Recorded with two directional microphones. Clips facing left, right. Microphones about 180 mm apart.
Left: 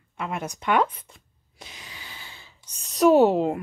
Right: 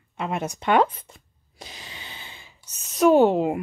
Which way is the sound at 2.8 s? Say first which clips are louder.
Even; centre (ahead or behind).